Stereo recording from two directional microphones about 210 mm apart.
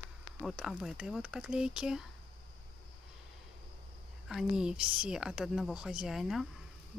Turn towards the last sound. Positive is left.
turn(degrees=0)  # may be behind; listen again after turning